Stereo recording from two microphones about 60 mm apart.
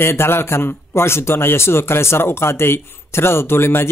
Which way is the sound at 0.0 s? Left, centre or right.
Left.